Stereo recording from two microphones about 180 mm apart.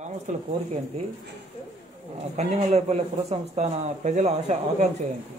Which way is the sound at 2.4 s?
35° right (ahead or behind).